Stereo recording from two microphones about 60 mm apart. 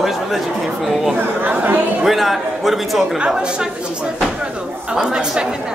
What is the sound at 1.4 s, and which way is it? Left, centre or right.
Speech, right.